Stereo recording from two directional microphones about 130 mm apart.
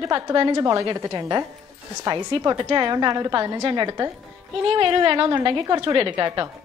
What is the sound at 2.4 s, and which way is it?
A woman's voice, 35° right (ahead or behind).